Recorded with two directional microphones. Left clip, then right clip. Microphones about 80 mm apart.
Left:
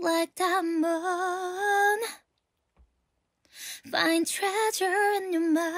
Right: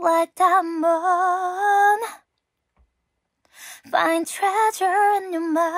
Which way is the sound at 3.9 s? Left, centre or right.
Left.